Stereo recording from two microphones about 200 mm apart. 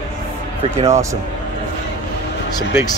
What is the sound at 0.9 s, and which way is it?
Speech, 15° right (ahead or behind).